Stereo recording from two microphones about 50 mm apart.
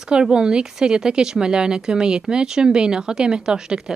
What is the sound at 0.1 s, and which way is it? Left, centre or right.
Speech, centre.